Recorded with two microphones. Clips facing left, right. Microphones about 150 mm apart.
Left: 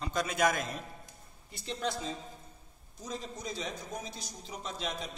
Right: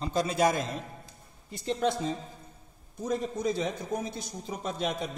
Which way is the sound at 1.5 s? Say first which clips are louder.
Right 8 dB; 50° right (ahead or behind).